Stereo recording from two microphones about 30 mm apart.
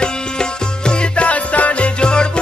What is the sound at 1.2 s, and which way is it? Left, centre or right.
Music, left.